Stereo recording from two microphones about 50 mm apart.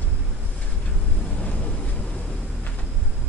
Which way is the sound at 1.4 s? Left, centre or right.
Left.